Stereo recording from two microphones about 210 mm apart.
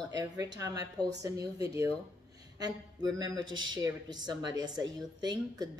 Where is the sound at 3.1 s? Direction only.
20° right (ahead or behind).